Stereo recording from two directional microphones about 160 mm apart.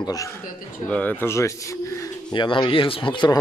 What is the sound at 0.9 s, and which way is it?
Speech, 10° left (ahead or behind).